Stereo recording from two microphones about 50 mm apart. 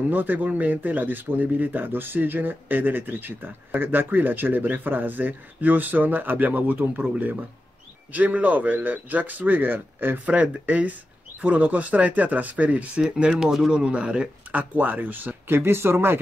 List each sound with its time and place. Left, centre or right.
0.1 s speech: right
8.1 s speech: right
10.2 s speech: right
13.2 s speech: centre; by 15.5 s right
15.5 s speech: right